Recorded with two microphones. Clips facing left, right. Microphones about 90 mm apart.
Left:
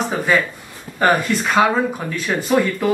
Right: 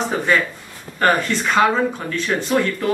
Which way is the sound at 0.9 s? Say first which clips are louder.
Left 1 dB; 10° left (ahead or behind).